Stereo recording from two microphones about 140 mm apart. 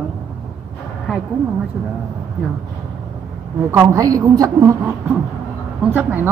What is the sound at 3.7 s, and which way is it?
A woman's voice, 20° right (ahead or behind).